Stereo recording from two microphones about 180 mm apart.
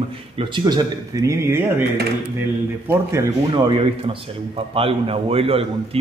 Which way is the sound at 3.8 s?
30° right (ahead or behind).